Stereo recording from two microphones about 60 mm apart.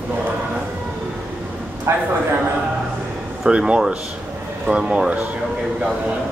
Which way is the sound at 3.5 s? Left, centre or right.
Centre.